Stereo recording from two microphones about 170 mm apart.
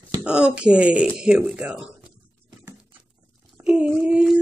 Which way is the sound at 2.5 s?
15° right (ahead or behind).